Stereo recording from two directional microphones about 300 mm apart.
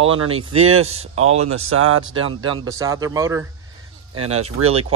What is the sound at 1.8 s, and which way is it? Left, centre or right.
Speech, right.